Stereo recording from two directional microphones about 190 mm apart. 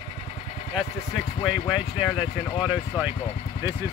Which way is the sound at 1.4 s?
5° right (ahead or behind).